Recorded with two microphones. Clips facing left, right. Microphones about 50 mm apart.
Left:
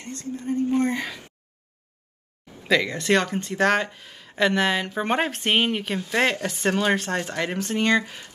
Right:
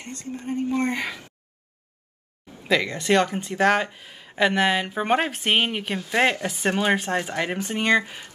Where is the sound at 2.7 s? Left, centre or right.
Centre.